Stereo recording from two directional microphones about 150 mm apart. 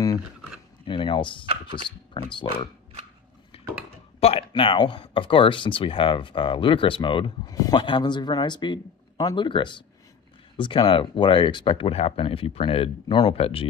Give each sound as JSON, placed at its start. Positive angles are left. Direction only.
{"t": 0.8, "sound": "speech", "side_deg": 35}
{"t": 3.5, "sound": "a sound", "side_deg": 40}
{"t": 4.2, "sound": "speech", "side_deg": 40}